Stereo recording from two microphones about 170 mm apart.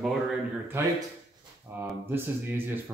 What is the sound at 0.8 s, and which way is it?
Speech, 15° right (ahead or behind).